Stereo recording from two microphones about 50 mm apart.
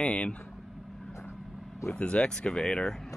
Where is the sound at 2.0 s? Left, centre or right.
Left.